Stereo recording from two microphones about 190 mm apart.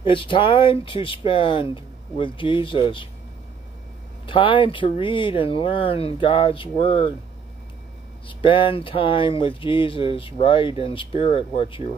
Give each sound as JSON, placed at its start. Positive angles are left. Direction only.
{"t": 0.0, "sound": "speech", "side_deg": 25}
{"t": 4.3, "sound": "speech", "side_deg": 25}
{"t": 8.3, "sound": "speech", "side_deg": 25}